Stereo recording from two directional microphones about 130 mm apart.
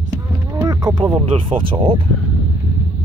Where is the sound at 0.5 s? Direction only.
30° right (ahead or behind).